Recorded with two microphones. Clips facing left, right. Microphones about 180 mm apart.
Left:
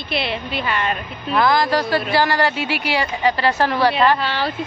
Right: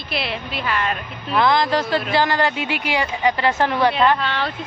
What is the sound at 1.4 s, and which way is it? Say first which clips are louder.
Speech: left 1 dB; 20° right (ahead or behind).